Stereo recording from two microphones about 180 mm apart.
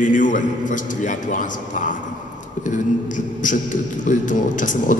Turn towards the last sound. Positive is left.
turn(degrees=45)  # may be behind; listen again after turning